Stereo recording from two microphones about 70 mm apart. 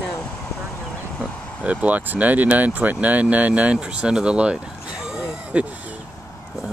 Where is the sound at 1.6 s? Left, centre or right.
Centre.